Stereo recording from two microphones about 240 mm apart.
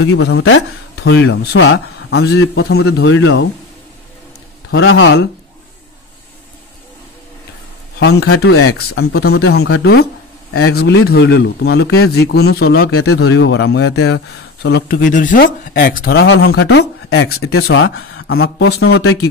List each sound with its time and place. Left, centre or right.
0.1 s speech: left
4.6 s speech: left
8.0 s speech: left
13.1 s speech: left
18.9 s speech: left